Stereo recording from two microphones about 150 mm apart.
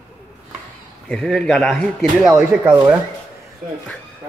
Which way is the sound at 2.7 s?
15° right (ahead or behind).